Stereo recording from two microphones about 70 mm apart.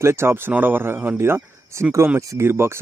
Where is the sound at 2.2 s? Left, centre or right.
Right.